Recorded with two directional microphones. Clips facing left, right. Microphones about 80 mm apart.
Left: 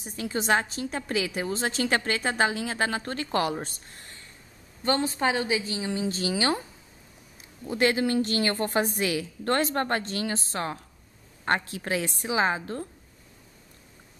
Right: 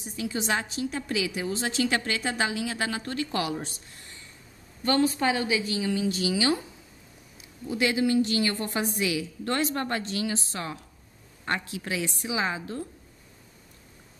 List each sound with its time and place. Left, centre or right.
0.0 s a woman's voice: left
4.8 s a woman's voice: left
7.6 s a woman's voice: left